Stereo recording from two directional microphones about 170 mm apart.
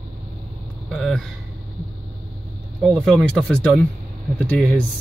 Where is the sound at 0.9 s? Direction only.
Centre (ahead or behind).